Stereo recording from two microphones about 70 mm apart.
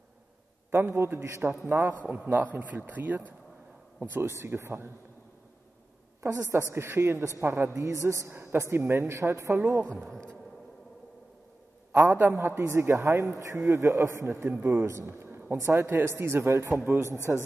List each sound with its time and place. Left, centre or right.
0.7 s speech: right
1.7 s a man's voice: right
2.2 s speech: right
4.2 s speech: right
6.2 s a man's voice: right
7.7 s a man's voice: right
9.6 s speech: right
9.9 s speech: centre
12.0 s speech: right
12.3 s a man's voice: right